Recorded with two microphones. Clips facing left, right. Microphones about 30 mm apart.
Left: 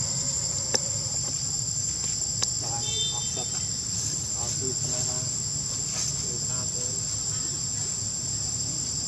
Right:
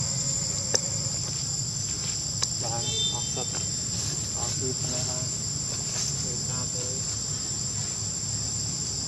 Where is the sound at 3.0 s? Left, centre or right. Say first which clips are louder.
Right 1 dB; centre.